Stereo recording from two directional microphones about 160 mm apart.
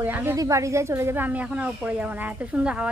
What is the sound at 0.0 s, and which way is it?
Speech, 15° right (ahead or behind).